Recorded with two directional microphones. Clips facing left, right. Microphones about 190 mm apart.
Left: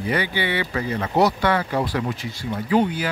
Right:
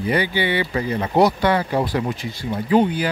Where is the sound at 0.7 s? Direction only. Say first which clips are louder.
Right 2 dB; 25° right (ahead or behind).